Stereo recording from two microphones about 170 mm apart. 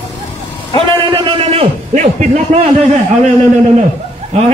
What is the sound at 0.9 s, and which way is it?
A man's voice, 30° right (ahead or behind).